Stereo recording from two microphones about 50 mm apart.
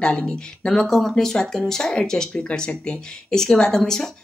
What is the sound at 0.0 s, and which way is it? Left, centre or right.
Speech, left.